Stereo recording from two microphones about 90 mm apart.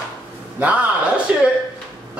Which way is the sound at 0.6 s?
15° right (ahead or behind).